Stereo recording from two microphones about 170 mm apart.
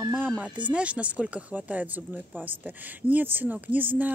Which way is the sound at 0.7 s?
5° right (ahead or behind).